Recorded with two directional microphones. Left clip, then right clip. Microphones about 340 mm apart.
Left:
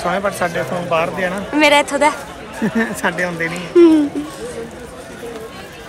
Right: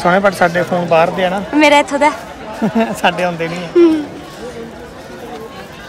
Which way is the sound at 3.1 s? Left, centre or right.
Right.